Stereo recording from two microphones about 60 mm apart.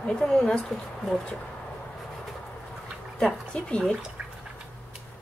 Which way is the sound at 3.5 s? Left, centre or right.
Centre.